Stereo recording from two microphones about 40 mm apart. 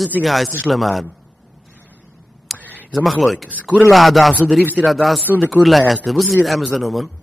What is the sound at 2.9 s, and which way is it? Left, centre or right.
A man's voice, centre.